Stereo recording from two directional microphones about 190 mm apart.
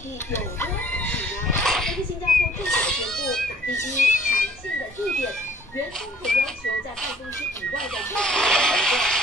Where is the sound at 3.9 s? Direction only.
45° left (ahead or behind).